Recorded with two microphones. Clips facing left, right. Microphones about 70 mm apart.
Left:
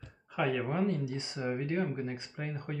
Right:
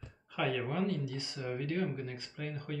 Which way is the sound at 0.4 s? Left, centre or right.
Centre.